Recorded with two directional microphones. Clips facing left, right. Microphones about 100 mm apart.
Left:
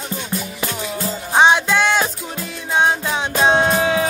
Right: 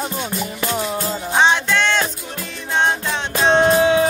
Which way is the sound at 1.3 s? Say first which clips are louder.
Left 3 dB; 15° left (ahead or behind).